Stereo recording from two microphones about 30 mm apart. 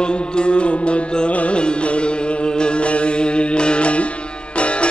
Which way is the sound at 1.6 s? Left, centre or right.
Left.